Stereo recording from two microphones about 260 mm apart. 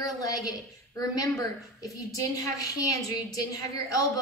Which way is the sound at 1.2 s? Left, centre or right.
Centre.